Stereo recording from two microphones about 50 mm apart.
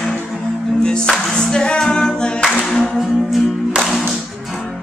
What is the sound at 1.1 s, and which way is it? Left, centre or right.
Singing, centre.